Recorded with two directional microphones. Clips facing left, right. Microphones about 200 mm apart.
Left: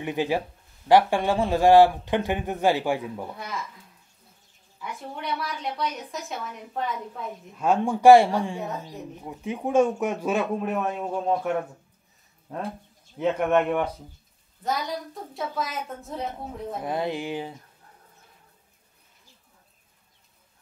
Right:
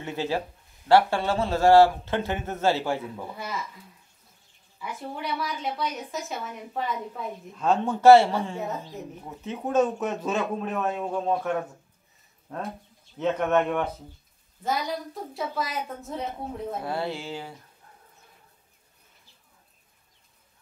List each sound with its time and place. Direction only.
0.0 s speech: 15° left (ahead or behind)
4.7 s a woman's voice: centre (ahead or behind)
7.5 s a woman's voice: 10° left (ahead or behind)
14.6 s a woman's voice: centre (ahead or behind)
16.8 s speech: 15° left (ahead or behind)